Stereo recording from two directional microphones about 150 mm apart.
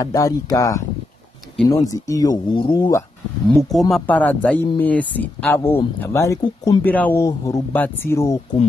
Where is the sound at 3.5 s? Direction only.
Centre (ahead or behind).